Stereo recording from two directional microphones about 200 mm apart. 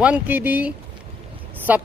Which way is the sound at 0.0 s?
5° right (ahead or behind).